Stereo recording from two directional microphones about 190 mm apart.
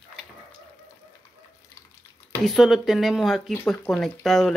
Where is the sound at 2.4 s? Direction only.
Centre (ahead or behind).